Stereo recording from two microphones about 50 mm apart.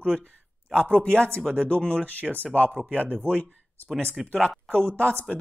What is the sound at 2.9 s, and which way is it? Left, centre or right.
Speech, right.